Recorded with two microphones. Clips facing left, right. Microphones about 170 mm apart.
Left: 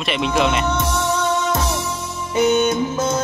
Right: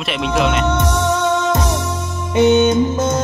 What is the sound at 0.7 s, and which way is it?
Music, 15° right (ahead or behind).